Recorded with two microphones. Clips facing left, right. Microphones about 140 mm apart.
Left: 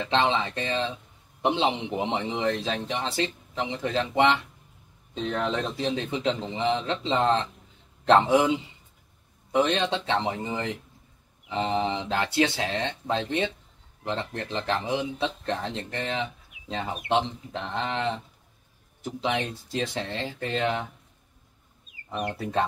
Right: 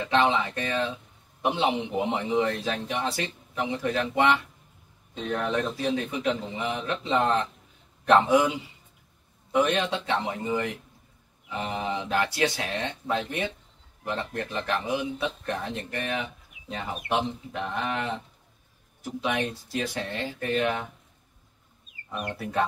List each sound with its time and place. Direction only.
0.1 s speech: 25° left (ahead or behind)
19.2 s speech: 25° left (ahead or behind)
22.1 s speech: 25° left (ahead or behind)